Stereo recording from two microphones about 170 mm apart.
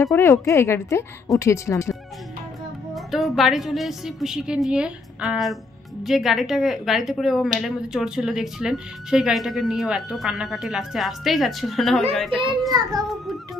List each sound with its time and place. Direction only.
0.0 s speech: 15° left (ahead or behind)
2.9 s a woman's voice: centre (ahead or behind)